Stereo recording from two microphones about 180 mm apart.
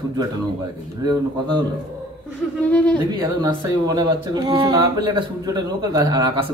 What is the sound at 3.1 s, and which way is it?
Speech, 20° right (ahead or behind).